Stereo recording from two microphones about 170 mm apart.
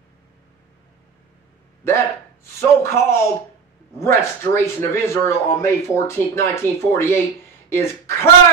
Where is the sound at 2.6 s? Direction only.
15° left (ahead or behind).